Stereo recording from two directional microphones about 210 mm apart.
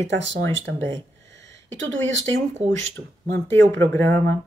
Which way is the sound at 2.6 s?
30° right (ahead or behind).